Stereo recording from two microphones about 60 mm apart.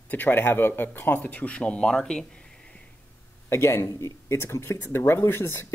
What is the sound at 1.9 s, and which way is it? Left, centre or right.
Speech, centre.